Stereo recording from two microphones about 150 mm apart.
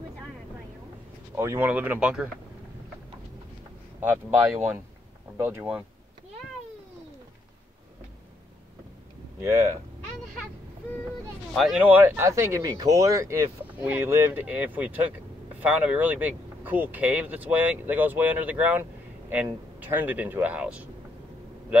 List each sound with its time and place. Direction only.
1.3 s speech: 20° right (ahead or behind)
5.4 s speech: 15° right (ahead or behind)
9.4 s speech: 15° right (ahead or behind)
11.5 s speech: centre (ahead or behind)
11.8 s speech: 15° right (ahead or behind)